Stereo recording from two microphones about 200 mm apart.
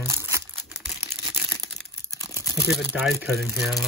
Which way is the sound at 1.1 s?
25° right (ahead or behind).